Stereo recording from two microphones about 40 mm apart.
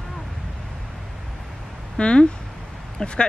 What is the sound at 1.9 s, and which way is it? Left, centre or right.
Speech, left.